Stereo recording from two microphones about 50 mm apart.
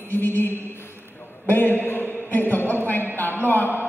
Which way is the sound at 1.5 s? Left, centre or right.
Left.